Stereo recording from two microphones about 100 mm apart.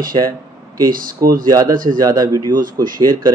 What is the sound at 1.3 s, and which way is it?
A man's voice, 35° right (ahead or behind).